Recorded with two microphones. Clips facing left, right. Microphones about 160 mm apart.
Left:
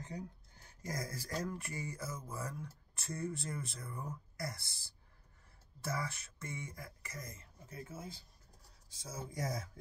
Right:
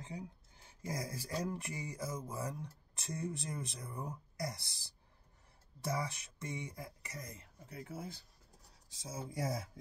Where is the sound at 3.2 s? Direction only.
15° right (ahead or behind).